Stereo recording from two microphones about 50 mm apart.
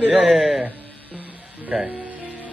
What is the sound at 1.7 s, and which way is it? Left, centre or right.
Speech, centre.